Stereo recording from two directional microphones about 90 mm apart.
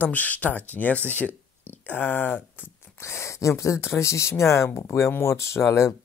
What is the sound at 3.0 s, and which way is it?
Speech, 30° left (ahead or behind).